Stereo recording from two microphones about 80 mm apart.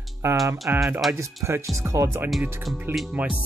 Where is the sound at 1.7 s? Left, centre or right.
Right.